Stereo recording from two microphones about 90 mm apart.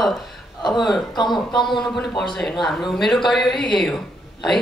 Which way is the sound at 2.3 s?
5° left (ahead or behind).